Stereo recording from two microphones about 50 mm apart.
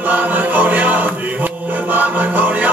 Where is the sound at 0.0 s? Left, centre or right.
Right.